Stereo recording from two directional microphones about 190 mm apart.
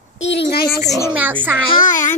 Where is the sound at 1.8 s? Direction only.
40° left (ahead or behind).